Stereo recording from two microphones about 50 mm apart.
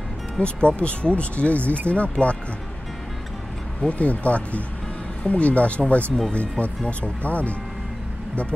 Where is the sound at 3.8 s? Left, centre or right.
Left.